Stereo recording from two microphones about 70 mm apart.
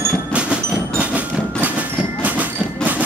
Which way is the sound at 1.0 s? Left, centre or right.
Right.